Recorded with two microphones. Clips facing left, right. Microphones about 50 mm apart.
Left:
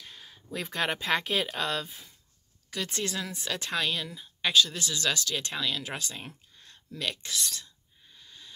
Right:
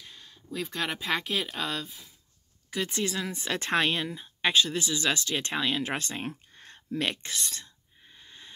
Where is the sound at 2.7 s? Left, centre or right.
Centre.